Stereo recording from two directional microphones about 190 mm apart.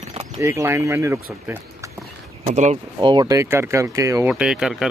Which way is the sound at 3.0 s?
25° right (ahead or behind).